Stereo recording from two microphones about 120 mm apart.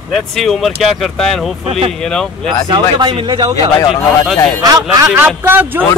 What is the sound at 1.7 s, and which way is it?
Speech, 55° right (ahead or behind).